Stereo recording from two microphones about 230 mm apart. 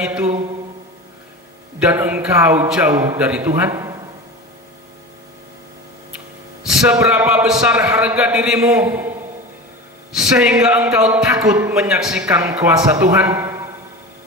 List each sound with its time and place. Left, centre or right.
0.0 s a man's voice: centre
1.8 s a man's voice: centre
3.2 s a man's voice: centre
6.6 s a man's voice: centre
10.1 s a man's voice: centre